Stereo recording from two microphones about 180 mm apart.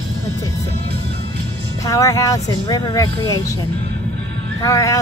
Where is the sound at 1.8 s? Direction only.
20° left (ahead or behind).